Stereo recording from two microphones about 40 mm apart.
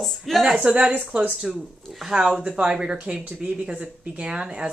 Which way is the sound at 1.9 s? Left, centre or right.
Centre.